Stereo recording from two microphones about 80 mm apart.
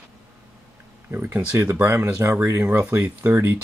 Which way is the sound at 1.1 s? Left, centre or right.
Right.